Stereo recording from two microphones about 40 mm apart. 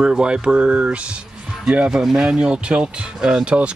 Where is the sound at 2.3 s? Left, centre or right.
Right.